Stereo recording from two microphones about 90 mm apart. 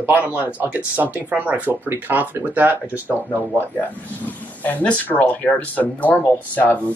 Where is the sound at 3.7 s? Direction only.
20° left (ahead or behind).